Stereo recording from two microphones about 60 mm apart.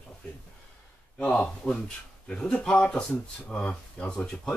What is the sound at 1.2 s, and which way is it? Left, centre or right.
Speech, left.